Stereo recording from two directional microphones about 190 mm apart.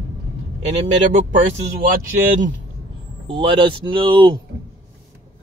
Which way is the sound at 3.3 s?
25° right (ahead or behind).